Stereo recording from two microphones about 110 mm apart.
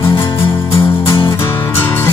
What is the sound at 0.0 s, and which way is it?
Music, 50° left (ahead or behind).